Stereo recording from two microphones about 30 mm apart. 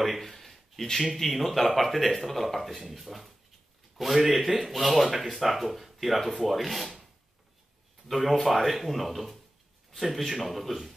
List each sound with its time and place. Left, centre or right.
0.4 s a sound: centre
1.1 s speech: centre
8.1 s speech: centre